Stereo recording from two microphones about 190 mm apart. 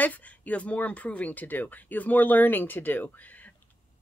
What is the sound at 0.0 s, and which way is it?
Speech, 10° left (ahead or behind).